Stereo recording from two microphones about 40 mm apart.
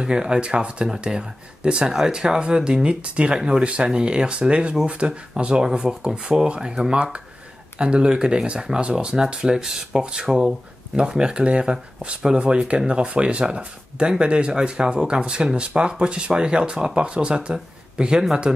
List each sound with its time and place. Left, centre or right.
0.0 s speech: centre